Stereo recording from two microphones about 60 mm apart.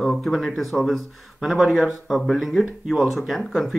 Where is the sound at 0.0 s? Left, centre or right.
Centre.